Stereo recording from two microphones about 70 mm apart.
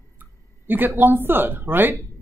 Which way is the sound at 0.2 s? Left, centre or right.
Right.